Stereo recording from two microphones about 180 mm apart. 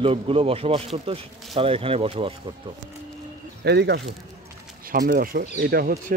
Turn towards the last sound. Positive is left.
turn(degrees=-60)  # may be behind; listen again after turning